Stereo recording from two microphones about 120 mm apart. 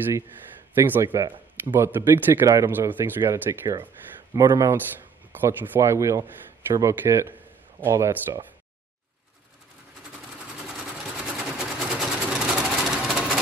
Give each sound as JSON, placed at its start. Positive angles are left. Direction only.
{"t": 0.7, "sound": "speech", "side_deg": -20}
{"t": 10.6, "sound": "sewing machine", "side_deg": -5}